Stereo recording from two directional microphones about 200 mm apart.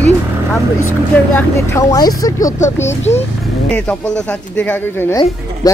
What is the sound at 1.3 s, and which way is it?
Speech, 15° left (ahead or behind).